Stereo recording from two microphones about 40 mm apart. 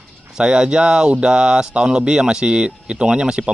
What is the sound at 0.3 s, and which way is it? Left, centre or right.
A man's voice, centre.